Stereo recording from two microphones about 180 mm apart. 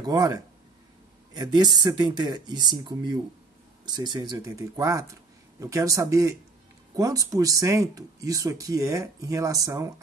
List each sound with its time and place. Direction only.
0.0 s speech: 20° right (ahead or behind)